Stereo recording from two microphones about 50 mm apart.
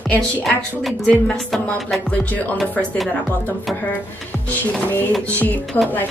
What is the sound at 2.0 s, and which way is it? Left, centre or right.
Music, left.